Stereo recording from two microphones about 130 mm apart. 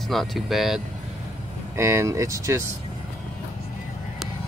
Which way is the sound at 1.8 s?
20° right (ahead or behind).